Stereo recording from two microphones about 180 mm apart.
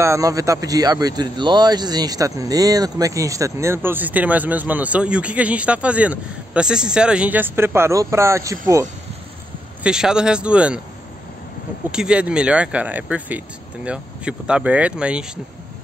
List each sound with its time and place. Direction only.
0.0 s speech: 15° right (ahead or behind)
9.8 s speech: 5° right (ahead or behind)
11.9 s speech: 5° right (ahead or behind)